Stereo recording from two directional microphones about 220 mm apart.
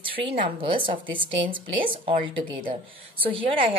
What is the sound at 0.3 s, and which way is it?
A woman's voice, 25° right (ahead or behind).